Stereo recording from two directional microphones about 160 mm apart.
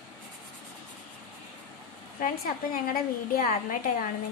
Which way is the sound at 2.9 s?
65° left (ahead or behind).